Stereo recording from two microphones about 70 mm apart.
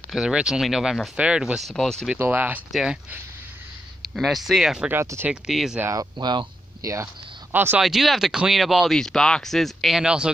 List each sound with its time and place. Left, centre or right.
0.1 s speech: centre
1.7 s speech: centre
2.1 s speech: right
2.7 s speech: centre
4.0 s speech: centre
5.9 s speech: right
6.8 s speech: right
7.5 s speech: right
7.8 s speech: centre
9.9 s speech: centre